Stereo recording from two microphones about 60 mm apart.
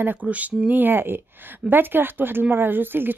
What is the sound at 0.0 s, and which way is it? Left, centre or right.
Speech, right.